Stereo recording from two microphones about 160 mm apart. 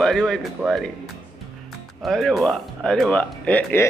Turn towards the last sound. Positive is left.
turn(degrees=10)  # may be behind; listen again after turning